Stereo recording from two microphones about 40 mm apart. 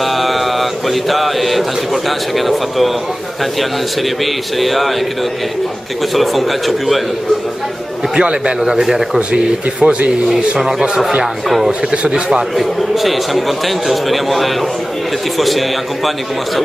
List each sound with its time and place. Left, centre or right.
0.0 s mantra: centre
2.0 s a man's voice: centre
4.2 s a man's voice: centre
6.1 s a man's voice: centre
8.2 s a man's voice: right
9.3 s speech: right
11.4 s a man's voice: centre
11.9 s speech: right
12.5 s a man's voice: centre